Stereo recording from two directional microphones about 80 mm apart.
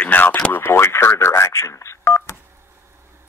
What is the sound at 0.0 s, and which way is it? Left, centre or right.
Radio, left.